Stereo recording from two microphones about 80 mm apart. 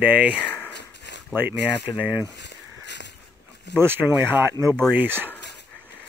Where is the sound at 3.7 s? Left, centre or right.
Right.